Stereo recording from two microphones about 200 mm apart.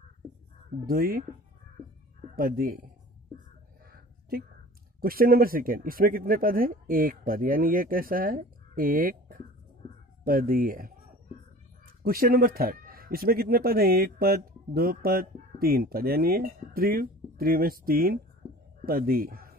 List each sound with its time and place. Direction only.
0.7 s speech: 45° right (ahead or behind)
2.3 s speech: 45° right (ahead or behind)
3.9 s a sound: 50° right (ahead or behind)
5.0 s speech: 45° right (ahead or behind)
12.0 s speech: 45° right (ahead or behind)